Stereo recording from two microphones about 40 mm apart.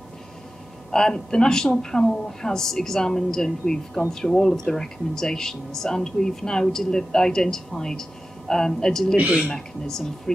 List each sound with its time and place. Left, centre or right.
0.9 s speech: centre
9.1 s a man's voice: right
9.5 s speech: centre